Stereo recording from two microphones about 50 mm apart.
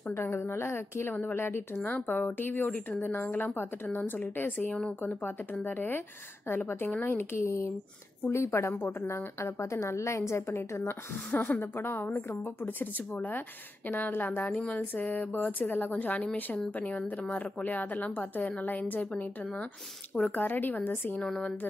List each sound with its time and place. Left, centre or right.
0.1 s a woman's voice: left
1.8 s a woman's voice: left
3.3 s a woman's voice: left
7.3 s a woman's voice: left
13.8 s speech: left
14.4 s a woman's voice: centre
14.8 s a woman's voice: left
20.2 s speech: left
21.2 s a woman's voice: left